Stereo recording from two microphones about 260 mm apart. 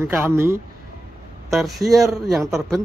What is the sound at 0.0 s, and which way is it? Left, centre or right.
Speech, centre.